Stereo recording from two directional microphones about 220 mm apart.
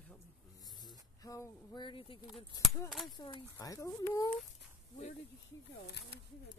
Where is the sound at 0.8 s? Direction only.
15° left (ahead or behind).